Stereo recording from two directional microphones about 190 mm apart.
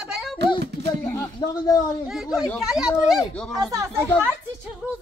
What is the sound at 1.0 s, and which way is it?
Speech, 15° left (ahead or behind).